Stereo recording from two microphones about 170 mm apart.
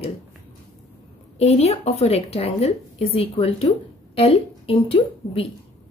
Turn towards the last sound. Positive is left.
turn(degrees=35)  # may be behind; listen again after turning